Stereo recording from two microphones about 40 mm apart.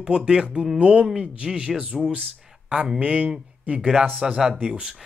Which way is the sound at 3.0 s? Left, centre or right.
Right.